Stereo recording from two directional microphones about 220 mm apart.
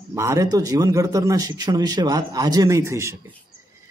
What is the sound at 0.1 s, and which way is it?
A man's voice, 15° right (ahead or behind).